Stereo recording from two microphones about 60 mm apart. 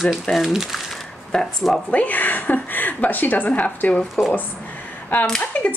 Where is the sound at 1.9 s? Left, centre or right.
Left.